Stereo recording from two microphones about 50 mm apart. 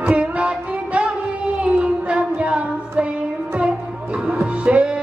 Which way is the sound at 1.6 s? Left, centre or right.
Right.